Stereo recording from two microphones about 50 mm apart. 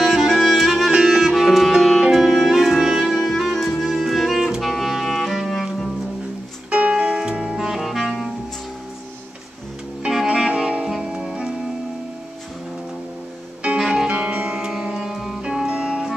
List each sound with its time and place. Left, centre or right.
0.0 s music: centre
1.0 s clarinet: centre
3.5 s music: centre
4.5 s clarinet: centre
5.0 s music: centre
6.7 s music: right
7.5 s saxophone: centre
10.1 s music: centre
13.7 s music: centre
14.0 s music: right